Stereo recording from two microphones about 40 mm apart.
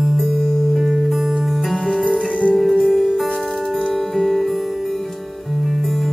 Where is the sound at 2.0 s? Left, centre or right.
Left.